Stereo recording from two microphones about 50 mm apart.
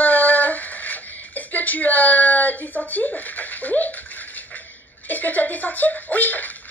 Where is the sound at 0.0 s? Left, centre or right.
Left.